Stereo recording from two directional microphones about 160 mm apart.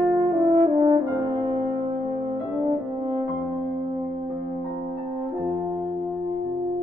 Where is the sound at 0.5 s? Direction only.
25° right (ahead or behind).